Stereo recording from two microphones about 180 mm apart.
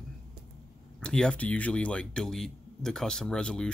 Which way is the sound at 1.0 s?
5° left (ahead or behind).